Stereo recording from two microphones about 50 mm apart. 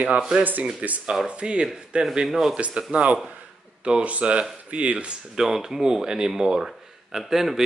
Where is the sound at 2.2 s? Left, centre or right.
Centre.